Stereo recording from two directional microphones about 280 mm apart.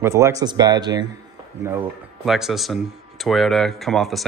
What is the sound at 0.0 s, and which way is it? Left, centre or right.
Speech, centre.